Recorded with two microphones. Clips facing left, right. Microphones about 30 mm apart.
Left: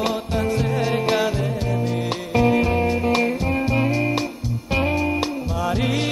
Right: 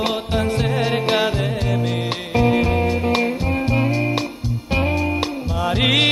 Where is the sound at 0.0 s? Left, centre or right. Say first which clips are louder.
Right 2 dB; right.